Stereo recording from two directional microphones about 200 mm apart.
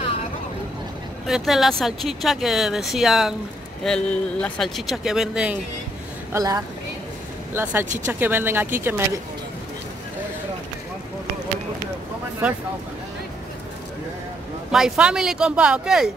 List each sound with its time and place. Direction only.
1.2 s speech: centre (ahead or behind)
6.3 s speech: 20° right (ahead or behind)
7.8 s speech: 40° right (ahead or behind)
8.1 s speech: 10° right (ahead or behind)
14.7 s speech: 5° right (ahead or behind)